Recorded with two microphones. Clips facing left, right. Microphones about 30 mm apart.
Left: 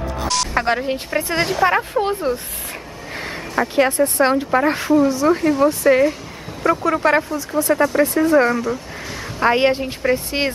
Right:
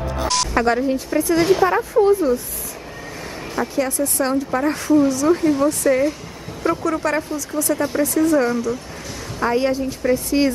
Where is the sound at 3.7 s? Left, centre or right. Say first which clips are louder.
Left 6 dB; left.